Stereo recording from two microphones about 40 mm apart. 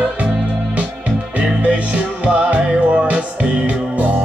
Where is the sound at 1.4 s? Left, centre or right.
Right.